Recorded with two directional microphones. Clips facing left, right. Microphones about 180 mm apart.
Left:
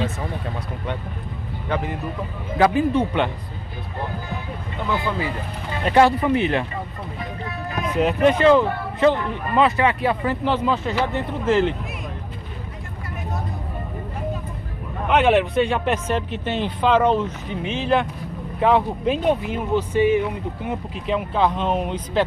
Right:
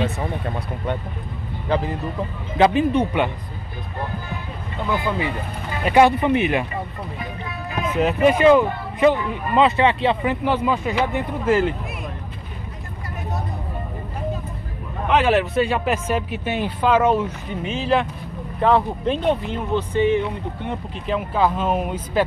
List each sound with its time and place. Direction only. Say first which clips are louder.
1.7 s speech: right 3 dB; 30° right (ahead or behind)
4.9 s speech: right 2 dB; 15° right (ahead or behind)
7.9 s speech: even; 5° right (ahead or behind)
9.7 s speech: right 2 dB; 25° right (ahead or behind)
10.4 s speech: left 1 dB; 10° right (ahead or behind)
15.0 s speech: left 1 dB; centre (ahead or behind)